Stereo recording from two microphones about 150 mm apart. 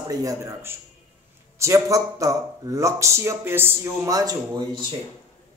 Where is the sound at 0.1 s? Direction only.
20° right (ahead or behind).